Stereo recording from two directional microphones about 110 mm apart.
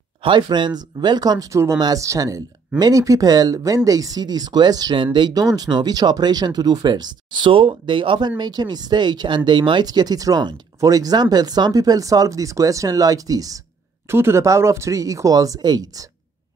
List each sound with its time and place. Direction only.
0.2 s speech: 45° right (ahead or behind)
8.3 s speech: 40° right (ahead or behind)
14.0 s speech: 20° right (ahead or behind)